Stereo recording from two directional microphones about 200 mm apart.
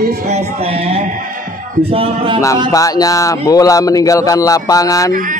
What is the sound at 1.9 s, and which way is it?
Speech, 30° right (ahead or behind).